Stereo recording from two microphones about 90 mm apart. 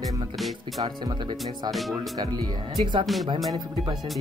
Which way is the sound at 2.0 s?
50° right (ahead or behind).